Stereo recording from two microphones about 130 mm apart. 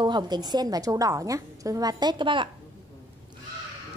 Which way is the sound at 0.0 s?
35° right (ahead or behind).